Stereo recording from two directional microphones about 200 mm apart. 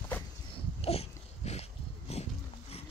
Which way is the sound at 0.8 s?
30° left (ahead or behind).